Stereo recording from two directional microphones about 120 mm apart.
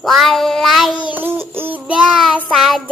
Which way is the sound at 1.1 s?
20° right (ahead or behind).